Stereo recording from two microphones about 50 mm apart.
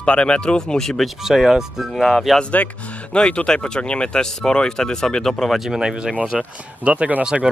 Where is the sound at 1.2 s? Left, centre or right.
Centre.